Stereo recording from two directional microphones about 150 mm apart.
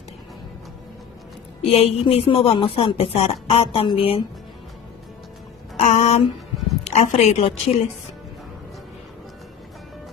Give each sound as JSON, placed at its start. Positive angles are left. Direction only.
{"t": 1.7, "sound": "speech", "side_deg": 45}
{"t": 5.8, "sound": "a woman's voice", "side_deg": 45}